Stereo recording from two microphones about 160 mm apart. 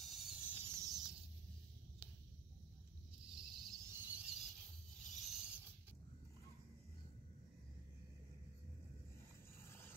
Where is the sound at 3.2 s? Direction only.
30° right (ahead or behind).